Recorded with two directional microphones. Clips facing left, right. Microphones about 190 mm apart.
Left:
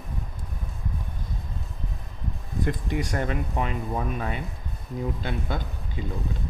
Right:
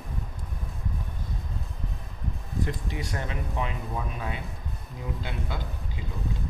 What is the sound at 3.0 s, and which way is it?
A man's voice, 50° left (ahead or behind).